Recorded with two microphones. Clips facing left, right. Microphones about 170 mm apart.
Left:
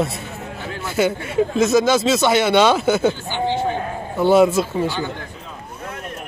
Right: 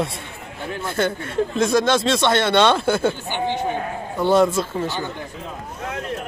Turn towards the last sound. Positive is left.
turn(degrees=5)  # may be behind; listen again after turning